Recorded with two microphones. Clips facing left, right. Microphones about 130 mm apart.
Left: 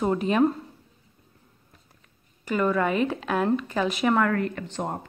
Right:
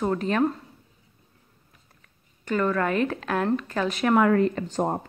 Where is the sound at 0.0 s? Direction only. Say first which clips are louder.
Left 2 dB; 10° left (ahead or behind).